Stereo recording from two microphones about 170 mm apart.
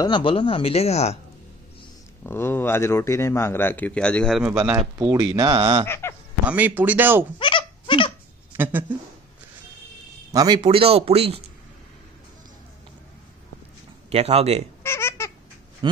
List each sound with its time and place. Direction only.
0.0 s speech: 30° left (ahead or behind)
2.2 s speech: 15° left (ahead or behind)
4.5 s speech: 10° right (ahead or behind)
5.1 s speech: 25° right (ahead or behind)
5.9 s a sound: 15° left (ahead or behind)
6.4 s speech: 10° right (ahead or behind)
7.3 s a sound: 30° left (ahead or behind)
8.5 s speech: 10° right (ahead or behind)
10.3 s a man's voice: 25° right (ahead or behind)
14.1 s a man's voice: 40° right (ahead or behind)
14.8 s baby laughter: 15° left (ahead or behind)
15.8 s speech: 30° right (ahead or behind)